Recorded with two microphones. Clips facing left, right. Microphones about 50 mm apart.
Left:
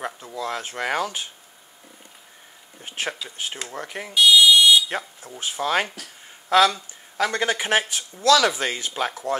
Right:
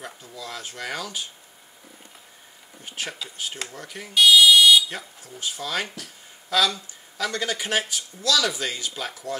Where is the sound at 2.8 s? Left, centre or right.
Left.